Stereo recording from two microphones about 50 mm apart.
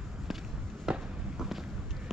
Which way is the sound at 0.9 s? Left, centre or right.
Centre.